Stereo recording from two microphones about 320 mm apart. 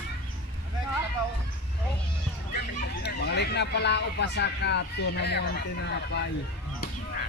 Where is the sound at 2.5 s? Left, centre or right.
Left.